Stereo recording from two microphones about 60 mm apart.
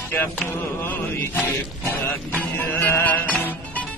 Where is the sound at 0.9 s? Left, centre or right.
Left.